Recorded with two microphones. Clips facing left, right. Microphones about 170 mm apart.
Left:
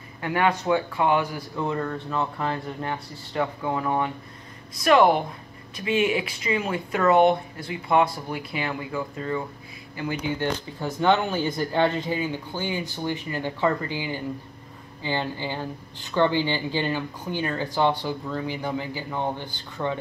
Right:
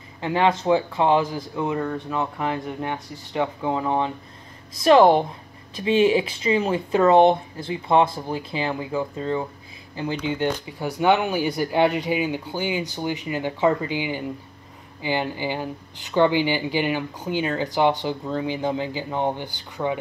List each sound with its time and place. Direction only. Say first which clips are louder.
0.2 s speech: right 3 dB; 25° right (ahead or behind)
1.3 s speech: right 2 dB; 15° right (ahead or behind)